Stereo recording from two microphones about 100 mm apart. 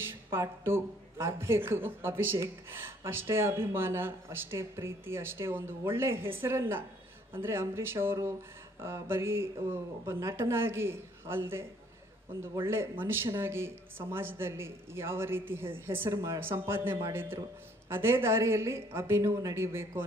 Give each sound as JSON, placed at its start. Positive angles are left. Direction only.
{"t": 0.0, "sound": "speech", "side_deg": -25}
{"t": 12.6, "sound": "speech", "side_deg": -25}